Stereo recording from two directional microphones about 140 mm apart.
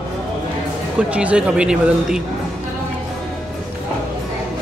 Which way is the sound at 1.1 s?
10° right (ahead or behind).